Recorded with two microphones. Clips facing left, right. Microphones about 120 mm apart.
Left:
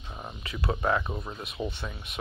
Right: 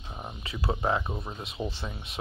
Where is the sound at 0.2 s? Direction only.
25° right (ahead or behind).